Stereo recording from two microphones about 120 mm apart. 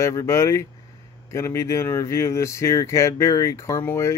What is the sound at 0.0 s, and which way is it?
Speech, 25° left (ahead or behind).